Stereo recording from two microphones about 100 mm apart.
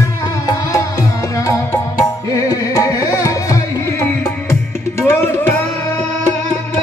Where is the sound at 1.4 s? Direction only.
30° left (ahead or behind).